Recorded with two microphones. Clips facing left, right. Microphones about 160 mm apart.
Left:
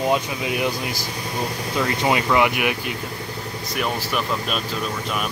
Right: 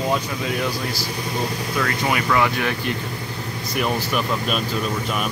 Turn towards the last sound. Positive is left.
turn(degrees=0)  # may be behind; listen again after turning